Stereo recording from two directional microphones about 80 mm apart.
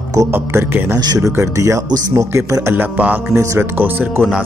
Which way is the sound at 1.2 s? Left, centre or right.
Right.